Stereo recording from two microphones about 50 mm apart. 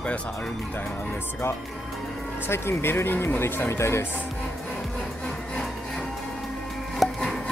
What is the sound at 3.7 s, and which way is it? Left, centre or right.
Speech, left.